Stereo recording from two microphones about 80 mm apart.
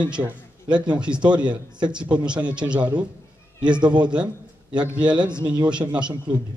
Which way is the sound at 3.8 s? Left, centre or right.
Right.